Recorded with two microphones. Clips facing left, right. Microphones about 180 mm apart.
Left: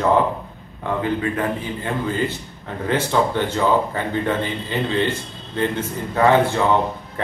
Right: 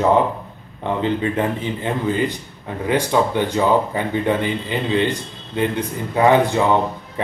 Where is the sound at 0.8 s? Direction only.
20° right (ahead or behind).